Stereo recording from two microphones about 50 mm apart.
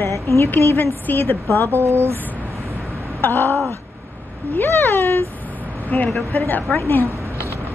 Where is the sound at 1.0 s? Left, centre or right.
Left.